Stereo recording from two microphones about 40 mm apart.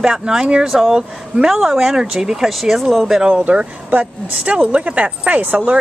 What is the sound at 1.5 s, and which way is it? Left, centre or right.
Speech, centre.